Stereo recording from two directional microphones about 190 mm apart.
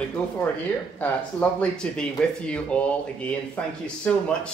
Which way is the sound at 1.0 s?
5° left (ahead or behind).